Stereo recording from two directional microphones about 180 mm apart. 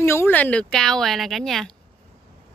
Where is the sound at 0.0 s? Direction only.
15° left (ahead or behind).